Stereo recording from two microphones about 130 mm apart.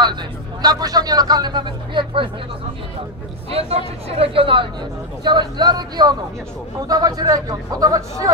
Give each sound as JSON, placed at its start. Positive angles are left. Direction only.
{"t": 0.0, "sound": "speech", "side_deg": -35}
{"t": 3.4, "sound": "speech", "side_deg": -50}